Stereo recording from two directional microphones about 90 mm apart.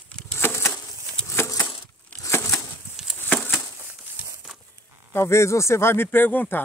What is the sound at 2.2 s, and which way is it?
Crushing, 35° left (ahead or behind).